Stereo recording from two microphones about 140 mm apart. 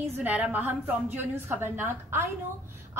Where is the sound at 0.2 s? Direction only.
10° right (ahead or behind).